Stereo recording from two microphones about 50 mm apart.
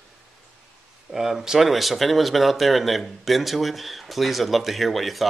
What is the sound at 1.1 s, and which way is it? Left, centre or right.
Speech, centre.